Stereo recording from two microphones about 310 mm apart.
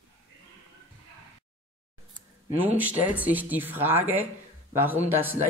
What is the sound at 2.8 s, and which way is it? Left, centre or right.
Speech, centre.